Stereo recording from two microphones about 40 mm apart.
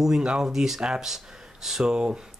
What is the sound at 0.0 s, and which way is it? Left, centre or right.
Speech, centre.